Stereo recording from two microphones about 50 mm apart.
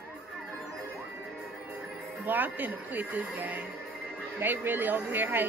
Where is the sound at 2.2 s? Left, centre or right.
Right.